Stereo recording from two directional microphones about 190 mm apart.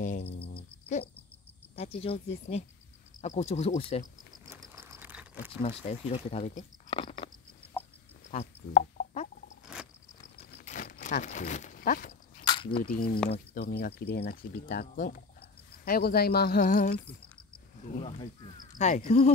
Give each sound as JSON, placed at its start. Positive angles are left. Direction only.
{"t": 0.0, "sound": "cricket", "side_deg": 40}
{"t": 1.8, "sound": "speech", "side_deg": 30}
{"t": 4.7, "sound": "patter", "side_deg": -10}
{"t": 5.6, "sound": "speech", "side_deg": 30}
{"t": 8.3, "sound": "speech", "side_deg": 35}
{"t": 10.6, "sound": "a sound", "side_deg": 40}
{"t": 12.4, "sound": "a sound", "side_deg": 25}
{"t": 12.7, "sound": "speech", "side_deg": 50}
{"t": 17.9, "sound": "speech", "side_deg": 30}
{"t": 18.8, "sound": "speech", "side_deg": 40}